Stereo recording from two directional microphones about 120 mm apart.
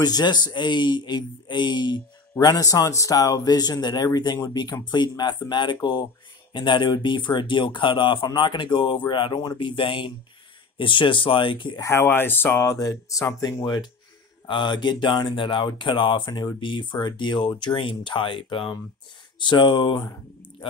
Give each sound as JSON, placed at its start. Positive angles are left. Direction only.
{"t": 0.0, "sound": "speech", "side_deg": 35}
{"t": 11.8, "sound": "speech", "side_deg": 20}